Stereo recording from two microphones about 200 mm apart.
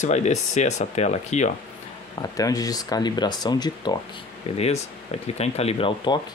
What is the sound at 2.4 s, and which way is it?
Speech, 20° left (ahead or behind).